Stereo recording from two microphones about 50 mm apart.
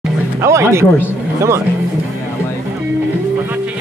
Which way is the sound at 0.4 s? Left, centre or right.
Right.